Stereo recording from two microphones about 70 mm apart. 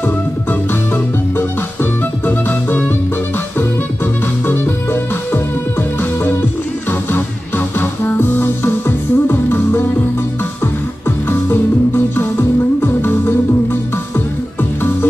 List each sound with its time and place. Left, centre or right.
0.0 s music: left
14.1 s music: left